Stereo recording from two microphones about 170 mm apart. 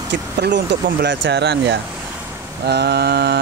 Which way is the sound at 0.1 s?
85° right.